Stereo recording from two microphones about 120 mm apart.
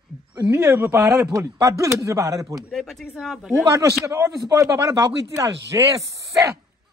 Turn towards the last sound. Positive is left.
turn(degrees=-25)  # may be behind; listen again after turning